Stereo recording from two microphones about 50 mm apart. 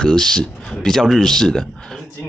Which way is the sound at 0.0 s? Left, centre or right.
Centre.